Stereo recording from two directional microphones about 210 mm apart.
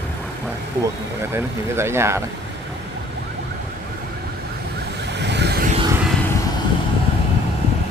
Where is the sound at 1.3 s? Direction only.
10° right (ahead or behind).